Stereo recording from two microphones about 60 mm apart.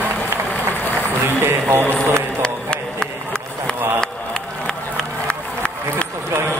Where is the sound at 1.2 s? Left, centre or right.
Right.